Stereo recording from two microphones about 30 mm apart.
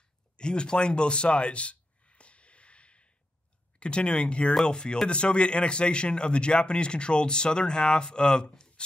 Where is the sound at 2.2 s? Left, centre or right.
Left.